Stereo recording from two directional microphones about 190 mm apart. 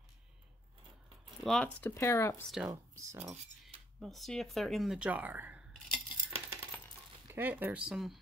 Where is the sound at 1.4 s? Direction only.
5° left (ahead or behind).